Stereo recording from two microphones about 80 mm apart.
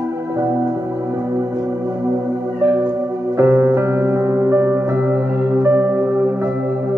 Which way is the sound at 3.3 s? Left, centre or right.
Right.